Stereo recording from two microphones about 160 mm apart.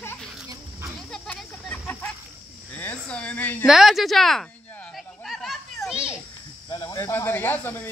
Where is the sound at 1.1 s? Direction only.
5° left (ahead or behind).